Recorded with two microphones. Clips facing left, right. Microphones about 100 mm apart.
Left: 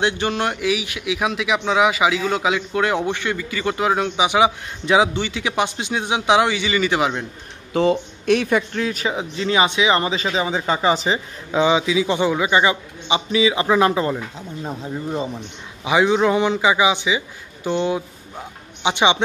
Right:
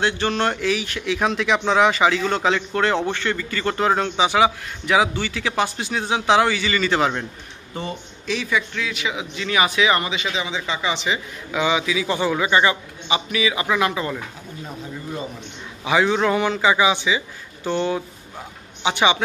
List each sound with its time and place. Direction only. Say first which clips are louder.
0.0 s a man's voice: even; 15° left (ahead or behind)
7.7 s speech: left 12 dB; 90° left
8.3 s speech: left 6 dB; 55° left (ahead or behind); by 10.0 s 25° left (ahead or behind)
10.0 s a man's voice: left 4 dB; 35° left (ahead or behind)
15.8 s a man's voice: left 2 dB; 20° left (ahead or behind)